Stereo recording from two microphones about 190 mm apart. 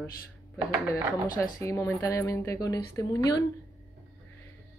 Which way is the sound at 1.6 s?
15° left (ahead or behind).